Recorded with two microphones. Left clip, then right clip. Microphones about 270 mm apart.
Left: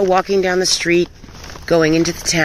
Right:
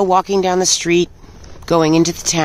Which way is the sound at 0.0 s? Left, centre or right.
Centre.